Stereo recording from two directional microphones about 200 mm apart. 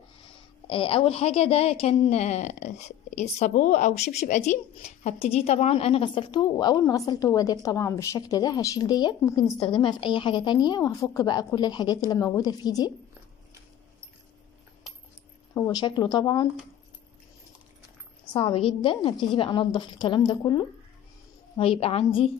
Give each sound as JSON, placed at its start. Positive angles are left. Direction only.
{"t": 0.7, "sound": "a woman's voice", "side_deg": 25}
{"t": 15.5, "sound": "a woman's voice", "side_deg": 20}
{"t": 18.3, "sound": "a woman's voice", "side_deg": 25}